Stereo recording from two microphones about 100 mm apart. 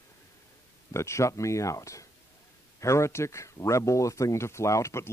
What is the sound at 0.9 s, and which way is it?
Speech, 30° left (ahead or behind).